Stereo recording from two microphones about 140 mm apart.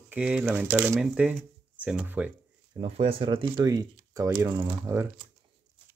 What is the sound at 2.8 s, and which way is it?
Speech, 45° right (ahead or behind).